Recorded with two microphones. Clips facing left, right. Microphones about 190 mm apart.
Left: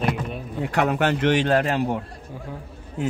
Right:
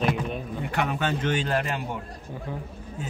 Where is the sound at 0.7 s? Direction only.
70° left (ahead or behind).